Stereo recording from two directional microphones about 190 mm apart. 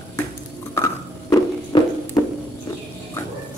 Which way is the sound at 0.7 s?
15° left (ahead or behind).